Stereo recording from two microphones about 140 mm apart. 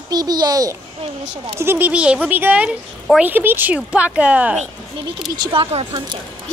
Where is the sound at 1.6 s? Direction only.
15° right (ahead or behind).